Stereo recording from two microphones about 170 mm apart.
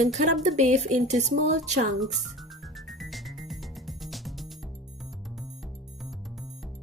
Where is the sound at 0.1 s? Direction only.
45° right (ahead or behind).